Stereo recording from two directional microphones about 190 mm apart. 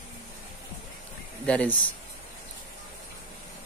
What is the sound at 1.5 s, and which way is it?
Speech, 5° left (ahead or behind).